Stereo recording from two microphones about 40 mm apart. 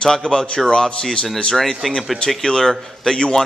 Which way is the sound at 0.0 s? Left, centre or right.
Centre.